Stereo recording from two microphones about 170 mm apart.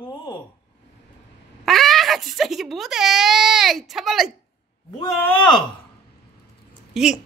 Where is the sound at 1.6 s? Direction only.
Centre (ahead or behind).